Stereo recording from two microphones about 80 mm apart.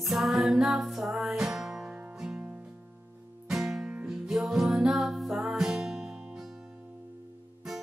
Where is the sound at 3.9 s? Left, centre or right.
Centre.